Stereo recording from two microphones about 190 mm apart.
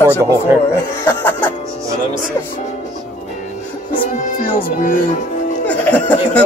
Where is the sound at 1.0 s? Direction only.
10° left (ahead or behind).